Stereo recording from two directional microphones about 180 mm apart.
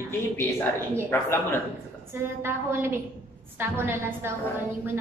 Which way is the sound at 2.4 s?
15° right (ahead or behind).